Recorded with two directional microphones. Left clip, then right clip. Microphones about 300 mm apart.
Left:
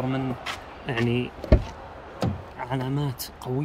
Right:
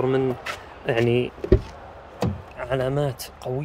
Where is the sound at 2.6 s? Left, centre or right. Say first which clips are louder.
Right 7 dB; centre.